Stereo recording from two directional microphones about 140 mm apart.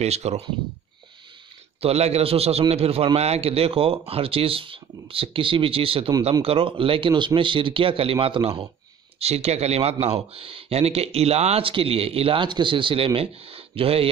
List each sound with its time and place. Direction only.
0.0 s speech: 50° right (ahead or behind)
1.8 s speech: 45° right (ahead or behind)